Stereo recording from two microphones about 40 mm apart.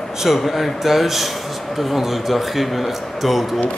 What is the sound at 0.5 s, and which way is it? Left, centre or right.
A man's voice, centre.